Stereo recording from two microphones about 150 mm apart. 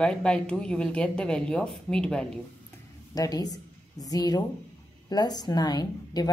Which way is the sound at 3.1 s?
25° left (ahead or behind).